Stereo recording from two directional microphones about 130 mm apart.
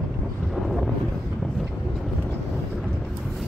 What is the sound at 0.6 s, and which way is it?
Vehicle, centre (ahead or behind).